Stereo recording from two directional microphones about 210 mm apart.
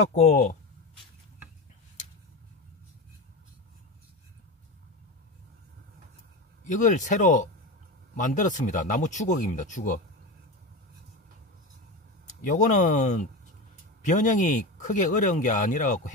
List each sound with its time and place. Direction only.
0.0 s speech: 30° left (ahead or behind)
6.6 s speech: 35° left (ahead or behind)
12.3 s speech: 35° left (ahead or behind)